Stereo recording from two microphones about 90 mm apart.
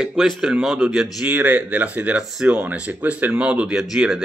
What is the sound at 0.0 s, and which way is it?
Speech, 10° right (ahead or behind).